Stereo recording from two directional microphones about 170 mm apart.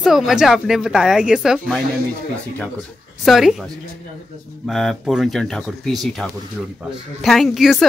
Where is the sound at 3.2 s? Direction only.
Centre (ahead or behind).